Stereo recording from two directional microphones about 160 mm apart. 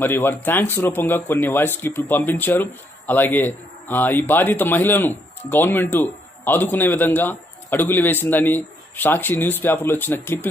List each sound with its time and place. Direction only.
0.0 s speech: 10° left (ahead or behind)